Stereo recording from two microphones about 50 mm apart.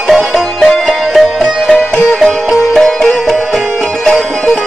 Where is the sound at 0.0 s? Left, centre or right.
Centre.